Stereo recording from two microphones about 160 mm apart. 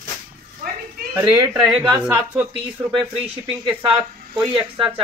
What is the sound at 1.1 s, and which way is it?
Speech, 15° right (ahead or behind).